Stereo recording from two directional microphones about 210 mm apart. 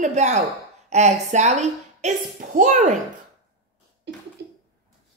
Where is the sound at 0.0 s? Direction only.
35° right (ahead or behind).